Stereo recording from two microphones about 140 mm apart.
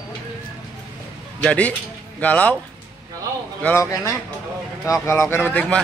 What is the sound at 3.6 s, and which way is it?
Speech, 20° left (ahead or behind).